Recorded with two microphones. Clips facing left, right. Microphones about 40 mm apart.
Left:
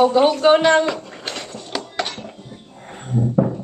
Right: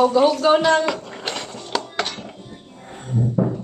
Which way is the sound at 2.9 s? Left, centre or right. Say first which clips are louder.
Left 2 dB; left.